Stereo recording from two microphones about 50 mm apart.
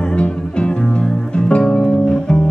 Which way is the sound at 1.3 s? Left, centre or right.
Centre.